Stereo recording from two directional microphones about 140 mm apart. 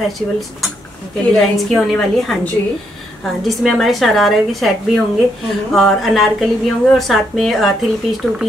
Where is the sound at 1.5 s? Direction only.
Centre (ahead or behind).